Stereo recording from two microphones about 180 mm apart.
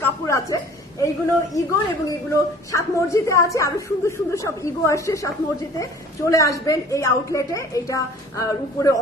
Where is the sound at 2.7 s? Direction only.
15° left (ahead or behind).